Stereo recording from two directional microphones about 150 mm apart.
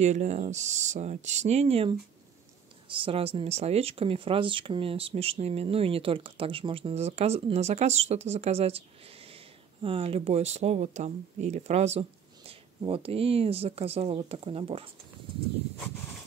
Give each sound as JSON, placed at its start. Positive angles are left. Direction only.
{"t": 0.0, "sound": "speech", "side_deg": -50}